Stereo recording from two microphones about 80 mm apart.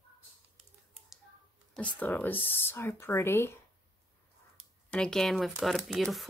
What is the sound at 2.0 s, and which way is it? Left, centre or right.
Speech, left.